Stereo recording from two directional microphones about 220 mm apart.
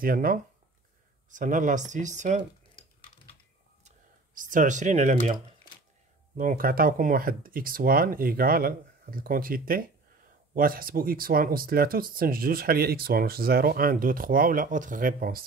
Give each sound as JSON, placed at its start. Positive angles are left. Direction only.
{"t": 0.0, "sound": "speech", "side_deg": -40}
{"t": 4.4, "sound": "speech", "side_deg": -35}